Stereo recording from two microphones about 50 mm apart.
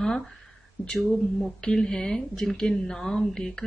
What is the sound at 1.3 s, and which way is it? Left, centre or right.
Speech, centre.